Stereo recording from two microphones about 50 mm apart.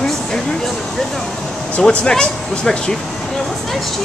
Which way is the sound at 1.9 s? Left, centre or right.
Centre.